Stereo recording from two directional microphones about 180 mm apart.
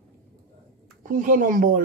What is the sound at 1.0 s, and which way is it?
Speech, 50° right (ahead or behind).